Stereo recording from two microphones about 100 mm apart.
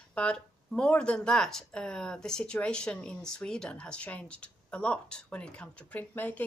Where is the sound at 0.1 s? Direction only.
10° left (ahead or behind).